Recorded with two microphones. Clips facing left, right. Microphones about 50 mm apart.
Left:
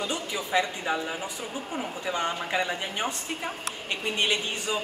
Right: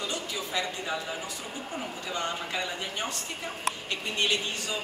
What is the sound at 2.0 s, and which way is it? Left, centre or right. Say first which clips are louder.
A man's voice: left 4 dB; left.